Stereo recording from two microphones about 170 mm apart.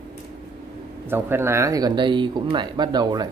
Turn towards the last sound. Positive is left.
turn(degrees=-25)  # may be behind; listen again after turning